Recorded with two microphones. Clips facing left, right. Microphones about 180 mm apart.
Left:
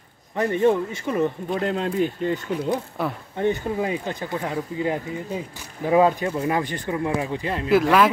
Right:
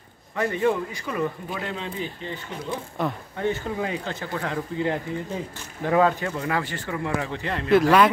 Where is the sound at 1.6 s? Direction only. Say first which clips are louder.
Left 9 dB; 45° left (ahead or behind).